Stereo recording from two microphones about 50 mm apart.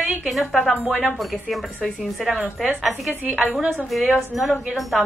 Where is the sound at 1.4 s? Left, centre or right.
Centre.